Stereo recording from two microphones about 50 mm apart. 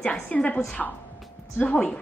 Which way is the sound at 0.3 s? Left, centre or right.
Left.